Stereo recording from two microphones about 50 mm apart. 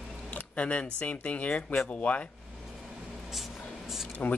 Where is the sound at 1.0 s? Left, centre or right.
Left.